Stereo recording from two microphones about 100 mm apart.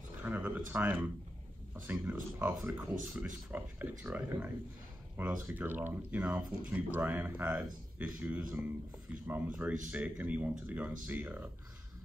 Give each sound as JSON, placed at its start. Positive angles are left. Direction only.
{"t": 0.2, "sound": "speech", "side_deg": -15}